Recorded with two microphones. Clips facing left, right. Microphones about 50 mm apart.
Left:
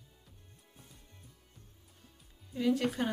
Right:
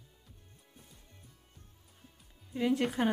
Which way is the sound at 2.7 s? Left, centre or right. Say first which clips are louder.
Right 2 dB; centre.